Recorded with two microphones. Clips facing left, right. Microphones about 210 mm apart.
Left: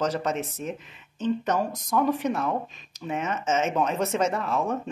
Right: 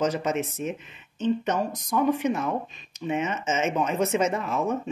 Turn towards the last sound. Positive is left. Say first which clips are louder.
# even
turn(degrees=-5)  # may be behind; listen again after turning